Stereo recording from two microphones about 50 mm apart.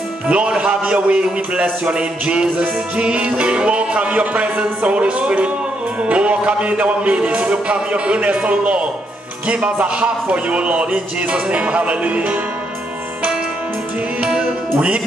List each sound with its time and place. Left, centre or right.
0.3 s a man's voice: right
14.2 s music: right